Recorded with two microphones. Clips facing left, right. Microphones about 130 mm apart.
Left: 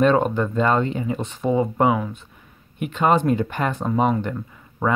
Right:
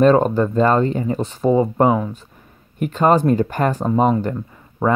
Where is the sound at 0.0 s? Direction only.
35° right (ahead or behind).